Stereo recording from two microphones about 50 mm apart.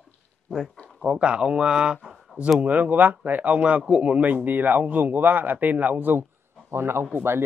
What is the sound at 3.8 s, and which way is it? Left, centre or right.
Speech, right.